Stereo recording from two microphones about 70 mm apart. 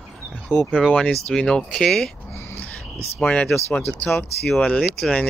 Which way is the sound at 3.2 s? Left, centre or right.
Centre.